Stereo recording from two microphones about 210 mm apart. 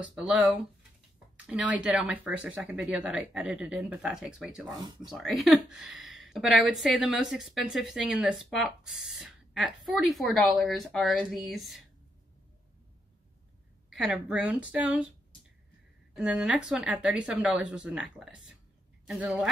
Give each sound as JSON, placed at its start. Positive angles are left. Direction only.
{"t": 0.0, "sound": "speech", "side_deg": -5}
{"t": 4.7, "sound": "speech", "side_deg": -20}
{"t": 5.0, "sound": "speech", "side_deg": 0}
{"t": 13.8, "sound": "speech", "side_deg": 0}
{"t": 16.2, "sound": "speech", "side_deg": -5}